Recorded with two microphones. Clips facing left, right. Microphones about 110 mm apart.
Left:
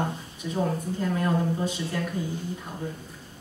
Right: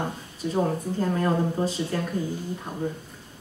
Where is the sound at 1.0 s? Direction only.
35° right (ahead or behind).